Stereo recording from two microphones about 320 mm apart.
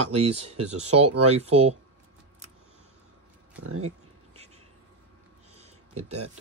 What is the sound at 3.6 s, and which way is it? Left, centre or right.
Speech, right.